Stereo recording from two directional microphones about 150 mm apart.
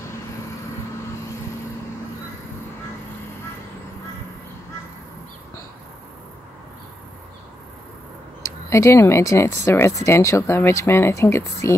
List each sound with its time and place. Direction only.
8.6 s speech: 20° left (ahead or behind)